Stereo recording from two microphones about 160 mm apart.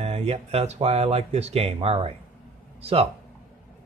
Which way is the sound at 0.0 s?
40° right (ahead or behind).